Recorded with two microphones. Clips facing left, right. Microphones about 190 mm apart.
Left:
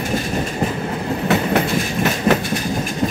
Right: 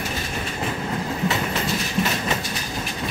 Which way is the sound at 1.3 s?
60° left (ahead or behind).